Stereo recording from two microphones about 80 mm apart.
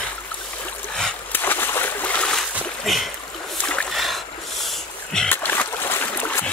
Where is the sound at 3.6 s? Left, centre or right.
Centre.